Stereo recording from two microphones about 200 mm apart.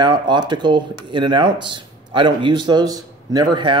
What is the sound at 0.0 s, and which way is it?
Speech, 20° right (ahead or behind).